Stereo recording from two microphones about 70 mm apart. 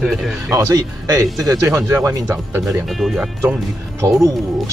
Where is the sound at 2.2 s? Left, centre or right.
Right.